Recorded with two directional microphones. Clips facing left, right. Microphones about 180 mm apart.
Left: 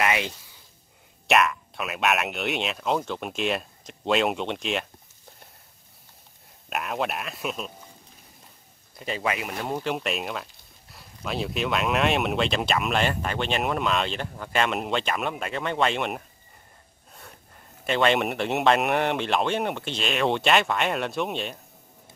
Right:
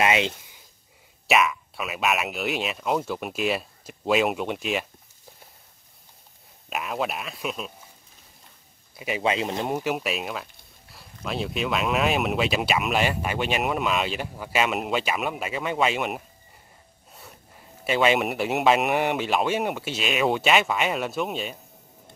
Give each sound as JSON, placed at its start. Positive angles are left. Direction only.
{"t": 0.0, "sound": "a sound", "side_deg": -20}
{"t": 1.2, "sound": "speech", "side_deg": 0}
{"t": 6.7, "sound": "speech", "side_deg": 0}
{"t": 8.9, "sound": "a man's voice", "side_deg": -10}
{"t": 9.2, "sound": "speech", "side_deg": -25}
{"t": 9.8, "sound": "speech", "side_deg": -5}